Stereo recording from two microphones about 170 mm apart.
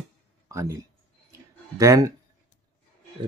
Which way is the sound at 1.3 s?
20° right (ahead or behind).